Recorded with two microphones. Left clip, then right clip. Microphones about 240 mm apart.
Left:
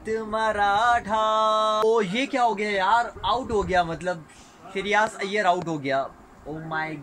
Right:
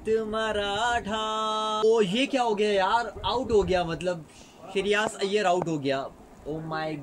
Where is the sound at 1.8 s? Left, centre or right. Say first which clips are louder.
Left 1 dB; centre.